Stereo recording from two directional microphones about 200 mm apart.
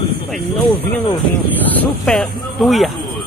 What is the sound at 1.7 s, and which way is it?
Speech, 5° left (ahead or behind).